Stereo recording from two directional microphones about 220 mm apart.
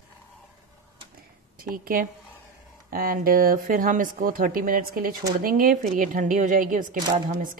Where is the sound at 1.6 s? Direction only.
40° right (ahead or behind).